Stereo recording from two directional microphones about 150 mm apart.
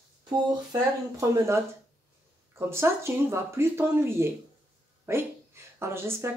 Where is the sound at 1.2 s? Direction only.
20° right (ahead or behind).